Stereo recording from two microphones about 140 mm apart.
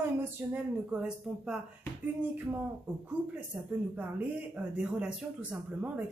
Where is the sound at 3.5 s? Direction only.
15° right (ahead or behind).